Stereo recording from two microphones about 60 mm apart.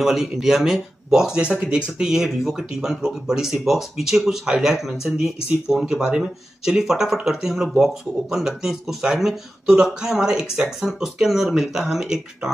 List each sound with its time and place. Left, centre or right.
0.0 s speech: centre